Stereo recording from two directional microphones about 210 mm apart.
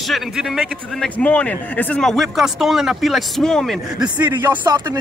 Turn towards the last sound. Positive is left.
turn(degrees=-15)  # may be behind; listen again after turning